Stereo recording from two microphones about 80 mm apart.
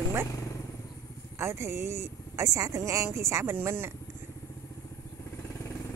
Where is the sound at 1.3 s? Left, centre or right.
Right.